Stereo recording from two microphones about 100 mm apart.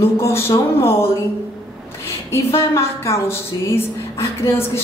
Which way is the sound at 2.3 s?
25° left (ahead or behind).